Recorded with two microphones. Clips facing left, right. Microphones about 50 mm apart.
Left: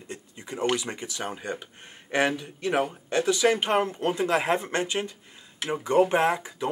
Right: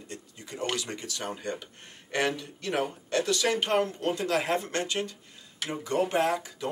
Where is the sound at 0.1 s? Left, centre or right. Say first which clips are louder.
Left 5 dB; left.